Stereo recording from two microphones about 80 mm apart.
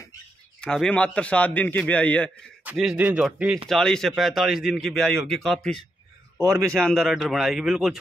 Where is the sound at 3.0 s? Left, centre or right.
Centre.